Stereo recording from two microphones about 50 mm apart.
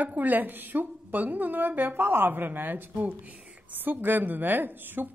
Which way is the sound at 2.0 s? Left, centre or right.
Right.